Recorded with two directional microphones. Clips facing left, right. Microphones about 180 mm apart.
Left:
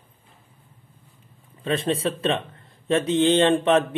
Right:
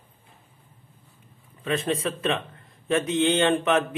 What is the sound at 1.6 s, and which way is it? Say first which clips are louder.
Speech: left 2 dB; 30° left (ahead or behind).